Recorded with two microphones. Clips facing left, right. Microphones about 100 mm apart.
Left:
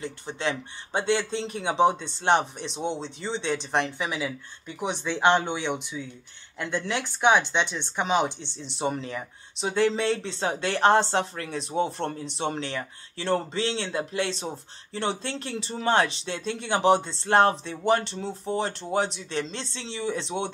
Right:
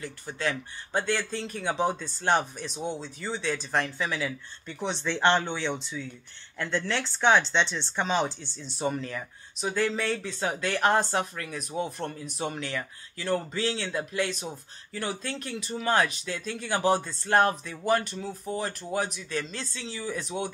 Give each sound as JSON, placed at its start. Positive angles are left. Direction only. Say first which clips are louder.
{"t": 0.0, "sound": "speech", "louder": "left 2 dB", "side_deg": 25}